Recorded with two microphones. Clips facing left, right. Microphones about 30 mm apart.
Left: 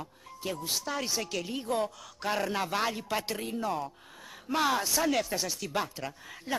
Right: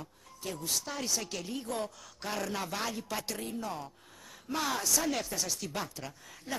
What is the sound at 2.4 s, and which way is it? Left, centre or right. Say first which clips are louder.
Speech: left 4 dB; left.